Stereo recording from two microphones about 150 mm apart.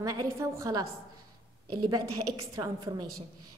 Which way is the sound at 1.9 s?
25° right (ahead or behind).